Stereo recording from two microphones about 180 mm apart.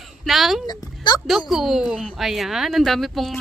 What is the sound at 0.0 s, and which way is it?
Speech, centre (ahead or behind).